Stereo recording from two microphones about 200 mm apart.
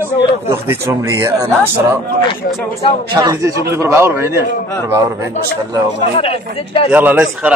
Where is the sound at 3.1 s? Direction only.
15° right (ahead or behind).